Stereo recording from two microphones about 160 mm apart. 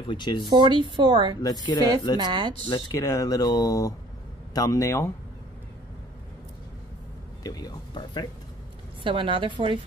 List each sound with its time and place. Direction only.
0.1 s speech: 30° left (ahead or behind)
0.5 s a woman's voice: 30° right (ahead or behind)
1.4 s speech: 25° left (ahead or behind)
2.1 s a woman's voice: 25° right (ahead or behind)
2.9 s speech: 20° left (ahead or behind)
7.4 s speech: 25° left (ahead or behind)
9.0 s a woman's voice: 30° right (ahead or behind)